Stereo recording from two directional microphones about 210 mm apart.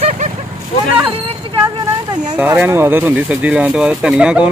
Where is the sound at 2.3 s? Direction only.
10° right (ahead or behind).